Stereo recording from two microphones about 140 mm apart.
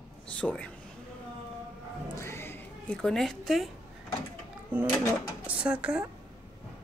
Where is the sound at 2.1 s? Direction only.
20° left (ahead or behind); by 3.6 s centre (ahead or behind).